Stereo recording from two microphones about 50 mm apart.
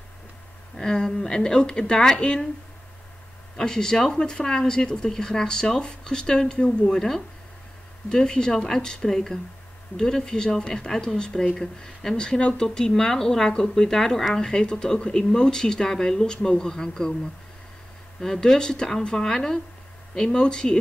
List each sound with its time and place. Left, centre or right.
0.7 s speech: centre
3.5 s speech: centre
18.2 s speech: centre